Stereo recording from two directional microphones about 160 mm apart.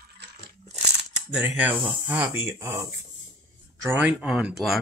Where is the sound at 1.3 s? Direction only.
10° right (ahead or behind).